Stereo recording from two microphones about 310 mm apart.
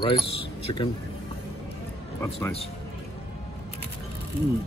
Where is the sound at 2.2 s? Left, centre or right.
Centre.